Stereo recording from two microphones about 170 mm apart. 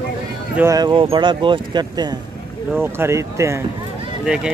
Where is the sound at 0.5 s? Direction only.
20° right (ahead or behind).